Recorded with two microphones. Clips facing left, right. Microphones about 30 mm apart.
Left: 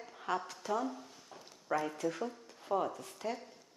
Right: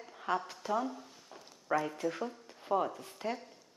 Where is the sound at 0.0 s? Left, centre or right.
Centre.